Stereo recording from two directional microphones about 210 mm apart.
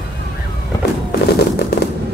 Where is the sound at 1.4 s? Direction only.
50° left (ahead or behind).